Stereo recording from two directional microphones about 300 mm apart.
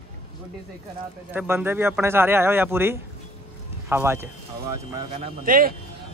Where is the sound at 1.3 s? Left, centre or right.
Centre.